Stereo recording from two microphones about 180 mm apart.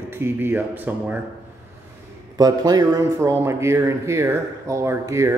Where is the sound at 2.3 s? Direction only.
20° right (ahead or behind).